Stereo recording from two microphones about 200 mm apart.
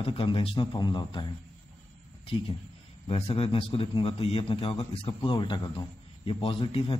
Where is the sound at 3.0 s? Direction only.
30° left (ahead or behind).